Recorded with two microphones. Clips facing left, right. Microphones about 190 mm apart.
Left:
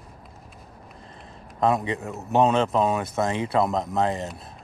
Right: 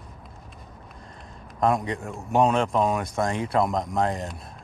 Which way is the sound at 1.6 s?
Centre (ahead or behind).